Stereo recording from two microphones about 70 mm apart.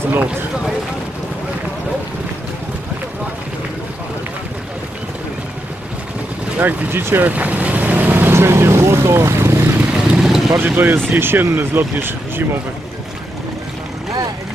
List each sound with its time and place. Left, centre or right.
6.6 s speech: right
9.9 s vehicle: centre
10.6 s speech: right